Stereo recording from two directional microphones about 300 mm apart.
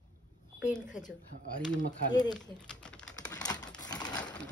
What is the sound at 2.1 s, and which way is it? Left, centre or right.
Speech, centre.